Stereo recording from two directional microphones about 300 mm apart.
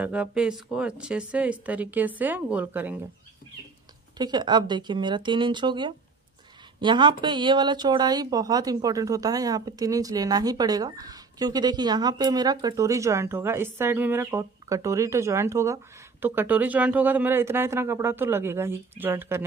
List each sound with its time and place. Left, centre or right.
0.0 s a woman's voice: centre
4.2 s speech: centre